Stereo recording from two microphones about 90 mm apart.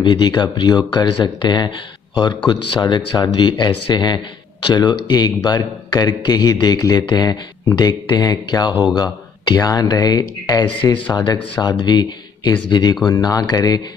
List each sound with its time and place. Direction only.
0.0 s speech: 55° left (ahead or behind); by 11.0 s 35° left (ahead or behind)
11.1 s speech: 50° left (ahead or behind)